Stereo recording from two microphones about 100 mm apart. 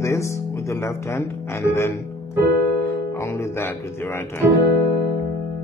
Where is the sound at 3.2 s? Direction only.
25° left (ahead or behind).